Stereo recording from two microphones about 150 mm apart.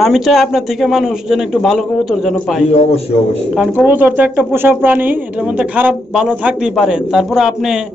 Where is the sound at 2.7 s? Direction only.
45° left (ahead or behind).